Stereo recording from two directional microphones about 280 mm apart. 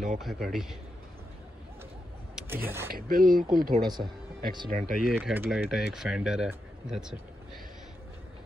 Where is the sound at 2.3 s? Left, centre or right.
Centre.